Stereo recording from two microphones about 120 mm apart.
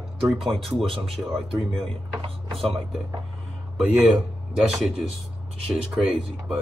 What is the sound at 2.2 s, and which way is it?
Speech, 50° right (ahead or behind).